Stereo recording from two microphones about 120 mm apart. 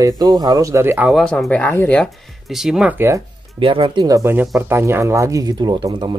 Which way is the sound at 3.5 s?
45° right (ahead or behind).